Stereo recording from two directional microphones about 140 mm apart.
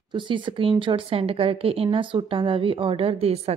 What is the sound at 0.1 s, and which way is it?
Speech, 35° right (ahead or behind).